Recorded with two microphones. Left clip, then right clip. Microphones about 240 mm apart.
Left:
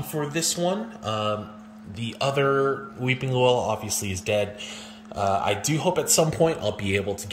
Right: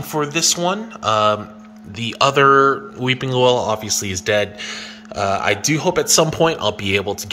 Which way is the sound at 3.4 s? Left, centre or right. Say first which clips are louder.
Right 6 dB; centre.